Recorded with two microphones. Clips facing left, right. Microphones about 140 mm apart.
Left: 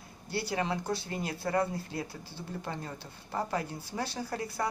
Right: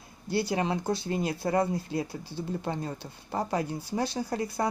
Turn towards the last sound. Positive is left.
turn(degrees=-20)  # may be behind; listen again after turning